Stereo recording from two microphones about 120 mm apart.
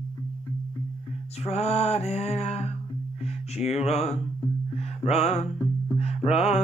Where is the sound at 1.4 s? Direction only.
60° left (ahead or behind).